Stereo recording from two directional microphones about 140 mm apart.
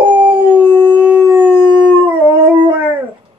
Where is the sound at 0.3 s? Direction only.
35° right (ahead or behind).